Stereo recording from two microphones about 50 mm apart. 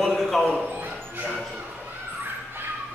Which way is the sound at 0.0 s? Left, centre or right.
Centre.